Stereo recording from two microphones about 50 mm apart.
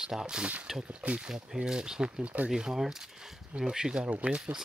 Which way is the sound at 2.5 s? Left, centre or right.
Centre.